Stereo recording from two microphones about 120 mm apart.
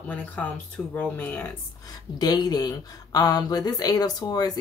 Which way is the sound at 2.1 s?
35° left (ahead or behind).